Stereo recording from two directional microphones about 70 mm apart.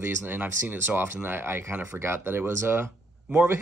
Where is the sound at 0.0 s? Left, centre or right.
Right.